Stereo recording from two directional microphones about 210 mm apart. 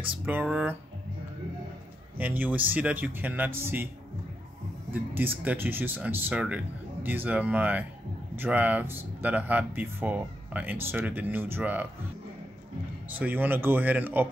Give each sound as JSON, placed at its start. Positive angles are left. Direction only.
{"t": 0.2, "sound": "speech", "side_deg": -10}
{"t": 2.1, "sound": "speech", "side_deg": -10}
{"t": 4.9, "sound": "speech", "side_deg": -10}
{"t": 13.1, "sound": "speech", "side_deg": -10}